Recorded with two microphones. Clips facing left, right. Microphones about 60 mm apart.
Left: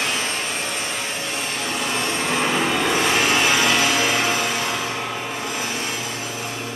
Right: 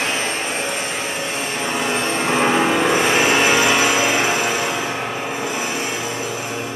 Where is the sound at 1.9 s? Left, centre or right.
Right.